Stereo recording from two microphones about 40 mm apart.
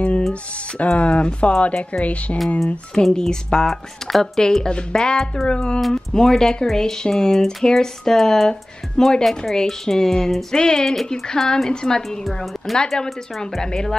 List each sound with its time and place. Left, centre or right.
0.3 s speech: left
2.9 s speech: centre
4.6 s a woman's voice: left; by 8.5 s centre
8.5 s speech: centre
12.3 s a woman's voice: centre
12.7 s speech: centre